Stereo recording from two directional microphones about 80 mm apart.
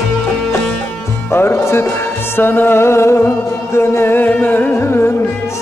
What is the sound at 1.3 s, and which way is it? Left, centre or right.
Speech, left.